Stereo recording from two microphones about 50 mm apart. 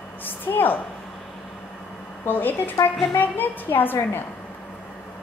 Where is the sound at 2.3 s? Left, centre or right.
Left.